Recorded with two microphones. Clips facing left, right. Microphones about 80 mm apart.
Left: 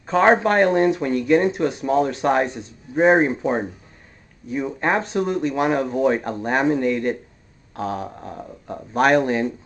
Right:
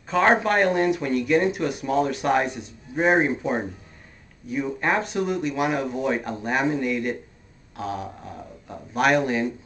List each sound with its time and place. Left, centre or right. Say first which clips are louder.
0.4 s speech: left 4 dB; left
2.9 s speech: left 4 dB; centre; by 9.5 s left